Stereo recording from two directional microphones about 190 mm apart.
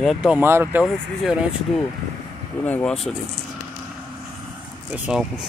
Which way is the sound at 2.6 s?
5° left (ahead or behind).